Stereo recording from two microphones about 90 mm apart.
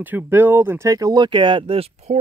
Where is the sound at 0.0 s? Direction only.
20° right (ahead or behind); by 1.9 s 90° right.